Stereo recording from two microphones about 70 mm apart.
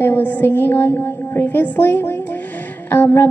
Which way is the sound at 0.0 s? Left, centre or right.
Left.